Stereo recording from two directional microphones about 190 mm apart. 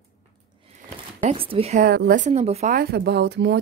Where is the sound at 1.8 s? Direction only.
50° right (ahead or behind).